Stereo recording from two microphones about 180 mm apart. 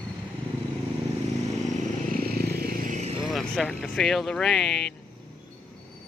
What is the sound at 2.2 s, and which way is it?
Vehicle, 60° right (ahead or behind).